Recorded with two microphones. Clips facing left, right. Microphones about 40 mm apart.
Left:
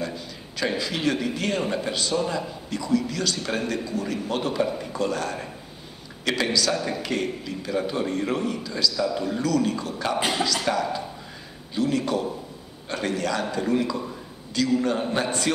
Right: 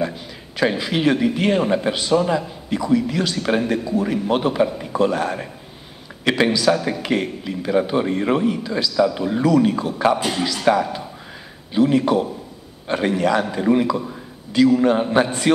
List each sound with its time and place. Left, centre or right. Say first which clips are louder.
0.0 s a man's voice: right 6 dB; right
10.1 s a man's voice: right 3 dB; centre
10.4 s a man's voice: right 6 dB; centre
11.7 s a man's voice: right 8 dB; right